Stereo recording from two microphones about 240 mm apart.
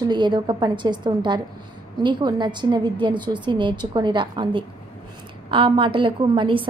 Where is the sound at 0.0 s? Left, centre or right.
Centre.